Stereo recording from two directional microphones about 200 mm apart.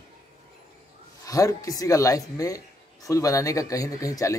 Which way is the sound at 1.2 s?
15° left (ahead or behind).